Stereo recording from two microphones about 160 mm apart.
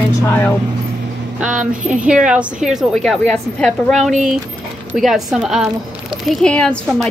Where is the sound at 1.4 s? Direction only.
5° right (ahead or behind).